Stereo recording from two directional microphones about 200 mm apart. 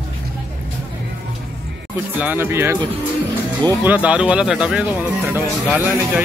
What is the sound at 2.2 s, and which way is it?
Speech, 10° right (ahead or behind).